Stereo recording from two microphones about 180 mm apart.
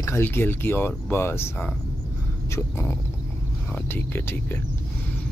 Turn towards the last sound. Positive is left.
turn(degrees=10)  # may be behind; listen again after turning